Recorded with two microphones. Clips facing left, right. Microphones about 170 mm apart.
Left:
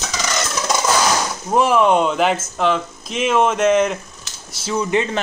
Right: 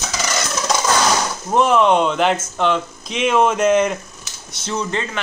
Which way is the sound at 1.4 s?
5° left (ahead or behind).